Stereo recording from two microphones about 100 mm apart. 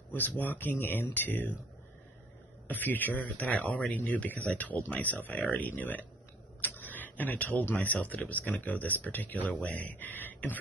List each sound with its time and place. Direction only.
0.1 s speech: 15° left (ahead or behind)
2.7 s speech: 20° left (ahead or behind)